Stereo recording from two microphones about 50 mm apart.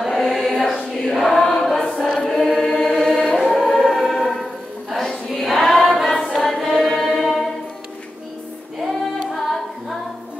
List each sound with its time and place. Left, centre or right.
0.0 s choir: centre
2.1 s chant: centre
3.2 s choir: centre
3.5 s music: centre
6.2 s choir: centre
9.3 s singing: centre